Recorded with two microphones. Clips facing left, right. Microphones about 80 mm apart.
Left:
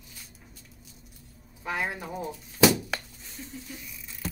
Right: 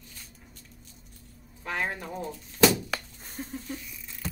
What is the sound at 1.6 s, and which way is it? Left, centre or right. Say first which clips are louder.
Speech: even; centre.